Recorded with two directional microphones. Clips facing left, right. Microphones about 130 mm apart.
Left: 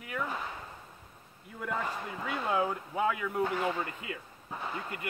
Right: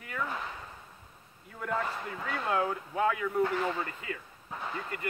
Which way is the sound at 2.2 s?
10° left (ahead or behind).